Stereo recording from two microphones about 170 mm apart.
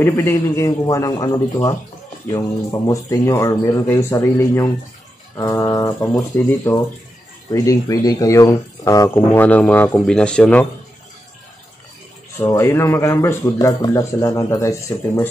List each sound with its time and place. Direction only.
0.0 s a man's voice: 15° left (ahead or behind)
12.4 s speech: 15° left (ahead or behind)